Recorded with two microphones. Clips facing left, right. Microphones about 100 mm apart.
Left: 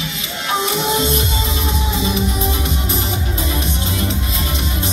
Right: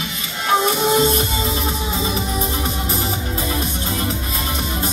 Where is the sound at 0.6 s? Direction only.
45° right (ahead or behind).